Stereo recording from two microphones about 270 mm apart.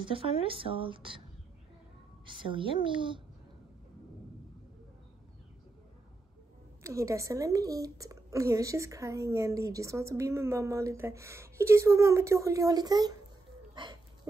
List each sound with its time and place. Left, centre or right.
0.0 s a woman's voice: centre
2.2 s a woman's voice: centre
6.8 s a woman's voice: centre